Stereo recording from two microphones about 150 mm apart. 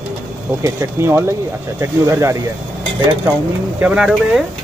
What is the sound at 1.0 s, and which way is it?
Speech, 15° right (ahead or behind).